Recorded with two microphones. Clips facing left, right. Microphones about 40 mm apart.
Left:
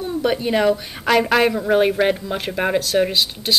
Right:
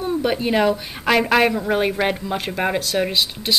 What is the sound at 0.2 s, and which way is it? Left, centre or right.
Speech, centre.